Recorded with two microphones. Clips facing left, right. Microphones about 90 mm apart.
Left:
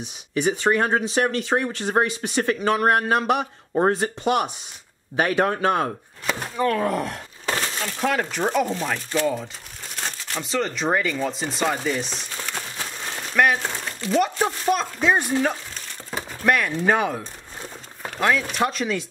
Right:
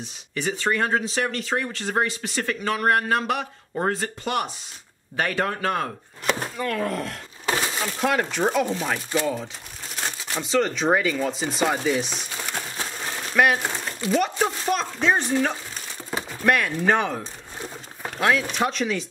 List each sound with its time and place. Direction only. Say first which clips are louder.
0.0 s speech: left 5 dB; 15° left (ahead or behind)
6.9 s speech: left 4 dB; 15° left (ahead or behind)
7.4 s speech: right 1 dB; 10° right (ahead or behind)